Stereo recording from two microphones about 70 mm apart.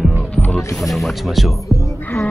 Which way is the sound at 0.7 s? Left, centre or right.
Centre.